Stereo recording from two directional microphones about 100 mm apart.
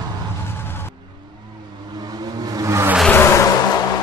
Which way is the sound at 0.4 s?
25° left (ahead or behind).